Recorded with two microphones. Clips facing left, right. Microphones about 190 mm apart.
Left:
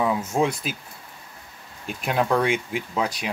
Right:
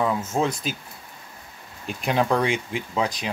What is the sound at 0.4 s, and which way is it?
Speech, 10° left (ahead or behind).